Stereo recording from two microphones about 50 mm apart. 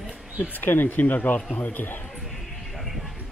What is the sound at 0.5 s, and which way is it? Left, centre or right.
A man's voice, left.